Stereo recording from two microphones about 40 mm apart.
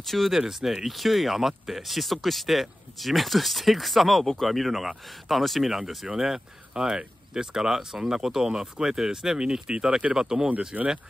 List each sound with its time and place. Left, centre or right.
0.0 s speech: centre
0.3 s speech: centre